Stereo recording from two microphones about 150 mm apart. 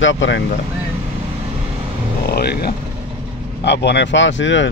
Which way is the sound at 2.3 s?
90° left.